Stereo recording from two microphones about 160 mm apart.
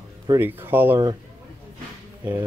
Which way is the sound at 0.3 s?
15° right (ahead or behind).